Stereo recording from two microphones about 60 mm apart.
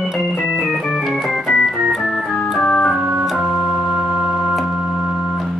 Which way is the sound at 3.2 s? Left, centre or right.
Centre.